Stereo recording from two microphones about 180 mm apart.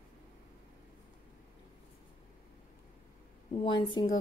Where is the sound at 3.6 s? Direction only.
25° left (ahead or behind).